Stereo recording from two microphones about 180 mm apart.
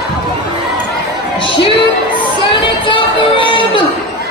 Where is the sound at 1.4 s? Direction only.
30° left (ahead or behind).